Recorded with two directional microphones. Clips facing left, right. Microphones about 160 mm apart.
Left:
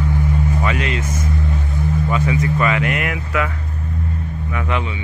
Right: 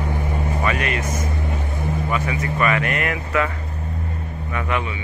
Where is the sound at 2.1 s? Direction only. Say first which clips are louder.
Left 6 dB; 20° left (ahead or behind).